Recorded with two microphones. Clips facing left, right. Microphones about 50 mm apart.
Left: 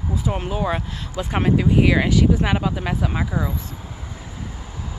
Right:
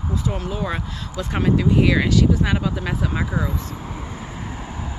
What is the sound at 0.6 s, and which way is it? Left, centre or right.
Speech, centre.